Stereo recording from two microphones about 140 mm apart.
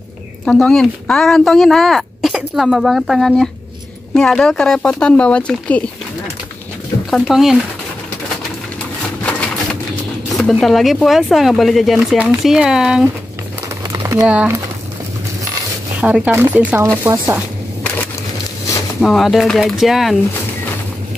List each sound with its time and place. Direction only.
0.5 s speech: 5° left (ahead or behind)
7.1 s speech: centre (ahead or behind)
9.2 s typewriter: 10° left (ahead or behind)
10.3 s speech: centre (ahead or behind)
13.9 s a sound: 20° right (ahead or behind)
14.2 s speech: 10° right (ahead or behind)
16.0 s speech: 15° right (ahead or behind)
18.9 s speech: centre (ahead or behind)